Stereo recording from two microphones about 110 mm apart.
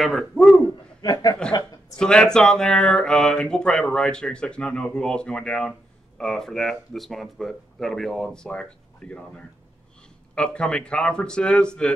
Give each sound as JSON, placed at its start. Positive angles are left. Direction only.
{"t": 0.0, "sound": "a man's voice", "side_deg": 0}
{"t": 1.0, "sound": "speech", "side_deg": 35}
{"t": 2.0, "sound": "speech", "side_deg": 5}
{"t": 10.3, "sound": "speech", "side_deg": 10}